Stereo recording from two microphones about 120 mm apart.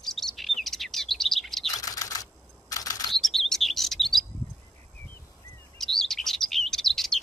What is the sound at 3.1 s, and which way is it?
Chirp, centre (ahead or behind).